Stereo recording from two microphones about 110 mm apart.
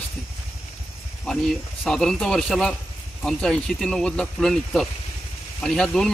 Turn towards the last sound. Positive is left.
turn(degrees=5)  # may be behind; listen again after turning